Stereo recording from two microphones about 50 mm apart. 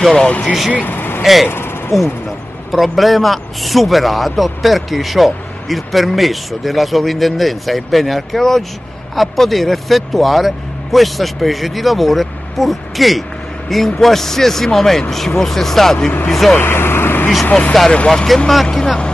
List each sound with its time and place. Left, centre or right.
0.2 s speech: centre
0.7 s vehicle: left
1.2 s a man's voice: centre
16.5 s vehicle: left
17.5 s speech: left
17.9 s speech: centre